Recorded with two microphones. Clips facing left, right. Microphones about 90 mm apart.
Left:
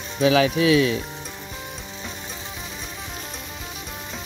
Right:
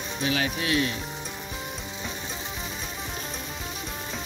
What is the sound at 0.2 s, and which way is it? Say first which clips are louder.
Sizzle: left 10 dB; 90° left.